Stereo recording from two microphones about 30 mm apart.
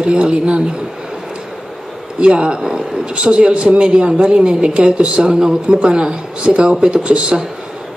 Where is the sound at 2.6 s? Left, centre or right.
Right.